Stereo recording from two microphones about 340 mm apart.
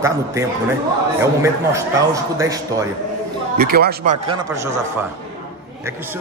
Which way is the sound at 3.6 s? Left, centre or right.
Right.